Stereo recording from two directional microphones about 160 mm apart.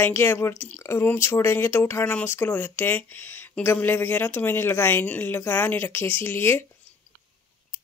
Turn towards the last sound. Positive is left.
turn(degrees=15)  # may be behind; listen again after turning